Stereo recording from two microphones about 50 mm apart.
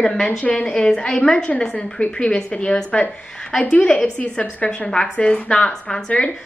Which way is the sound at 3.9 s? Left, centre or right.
Centre.